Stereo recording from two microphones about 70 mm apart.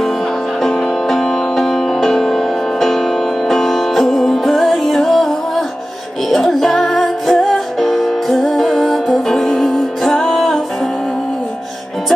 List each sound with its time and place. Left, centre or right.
0.6 s music: centre